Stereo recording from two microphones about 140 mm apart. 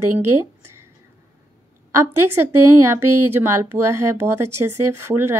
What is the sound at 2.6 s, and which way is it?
Speech, 20° right (ahead or behind).